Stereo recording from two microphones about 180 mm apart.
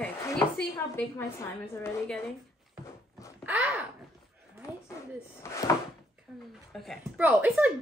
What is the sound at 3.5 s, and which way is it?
Speech, 5° right (ahead or behind).